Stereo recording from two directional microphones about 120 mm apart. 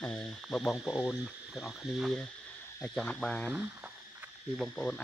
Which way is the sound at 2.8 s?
10° left (ahead or behind).